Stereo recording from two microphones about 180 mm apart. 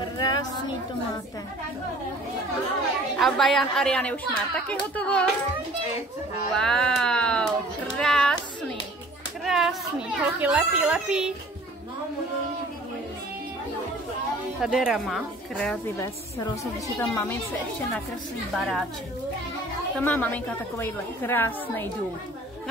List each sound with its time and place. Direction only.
0.0 s a sound: 20° left (ahead or behind)
3.2 s a woman's voice: centre (ahead or behind)
6.5 s a woman's voice: 5° left (ahead or behind)
14.6 s a woman's voice: 5° right (ahead or behind)
16.0 s a woman's voice: 15° left (ahead or behind)
18.5 s a woman's voice: centre (ahead or behind)
20.0 s a woman's voice: 10° left (ahead or behind)